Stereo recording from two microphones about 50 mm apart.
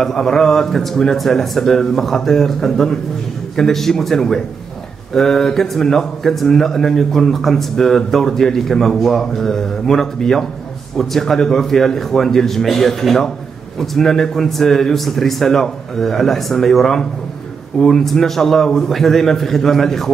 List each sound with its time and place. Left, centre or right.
0.0 s a man's voice: centre